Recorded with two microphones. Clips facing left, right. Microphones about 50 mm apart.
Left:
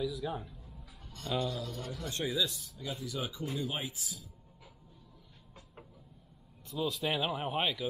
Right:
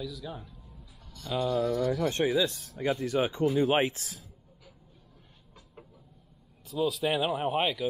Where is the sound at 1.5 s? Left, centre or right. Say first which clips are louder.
Right 13 dB; right.